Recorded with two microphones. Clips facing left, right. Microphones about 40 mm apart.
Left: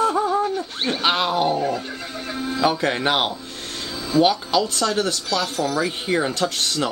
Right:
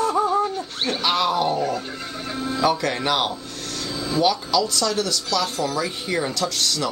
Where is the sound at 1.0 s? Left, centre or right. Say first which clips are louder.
Left 1 dB; left.